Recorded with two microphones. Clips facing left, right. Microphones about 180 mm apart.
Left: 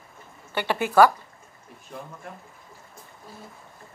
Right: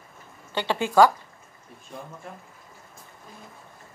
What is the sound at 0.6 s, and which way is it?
Speech, 15° right (ahead or behind).